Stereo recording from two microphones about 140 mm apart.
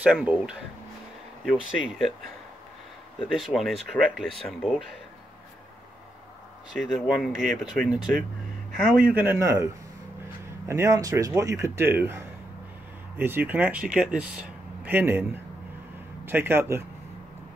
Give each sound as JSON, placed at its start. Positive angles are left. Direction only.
{"t": 0.0, "sound": "speech", "side_deg": -10}
{"t": 3.3, "sound": "speech", "side_deg": 0}
{"t": 6.7, "sound": "speech", "side_deg": 0}
{"t": 10.7, "sound": "speech", "side_deg": -20}
{"t": 16.3, "sound": "speech", "side_deg": -15}